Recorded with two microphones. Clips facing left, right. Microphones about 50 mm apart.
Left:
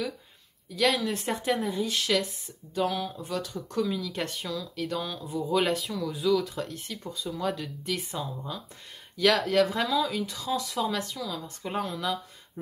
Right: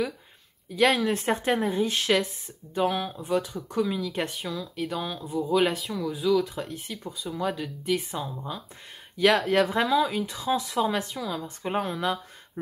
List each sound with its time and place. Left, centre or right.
0.7 s speech: right; by 5.2 s centre
5.2 s speech: centre
9.1 s speech: right